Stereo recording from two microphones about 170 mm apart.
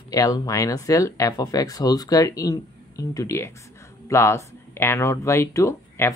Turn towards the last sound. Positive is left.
turn(degrees=15)  # may be behind; listen again after turning